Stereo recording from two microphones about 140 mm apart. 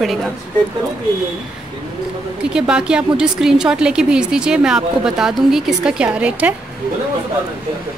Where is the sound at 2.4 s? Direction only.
5° right (ahead or behind).